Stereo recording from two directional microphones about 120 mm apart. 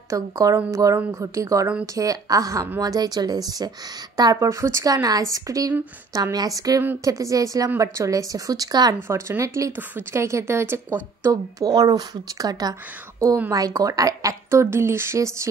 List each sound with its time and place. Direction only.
0.1 s a woman's voice: 25° right (ahead or behind)
9.0 s a woman's voice: 20° right (ahead or behind)
11.6 s a woman's voice: 30° right (ahead or behind)